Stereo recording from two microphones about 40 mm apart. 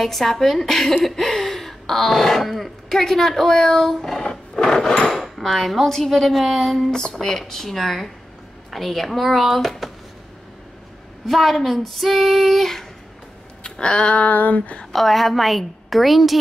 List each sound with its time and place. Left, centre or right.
0.0 s speech: centre
4.3 s wood: centre
5.4 s child singing: centre
6.9 s speech: centre
8.6 s child singing: centre
11.2 s child singing: centre
13.7 s a sound: left
14.3 s speech: left
14.9 s child singing: centre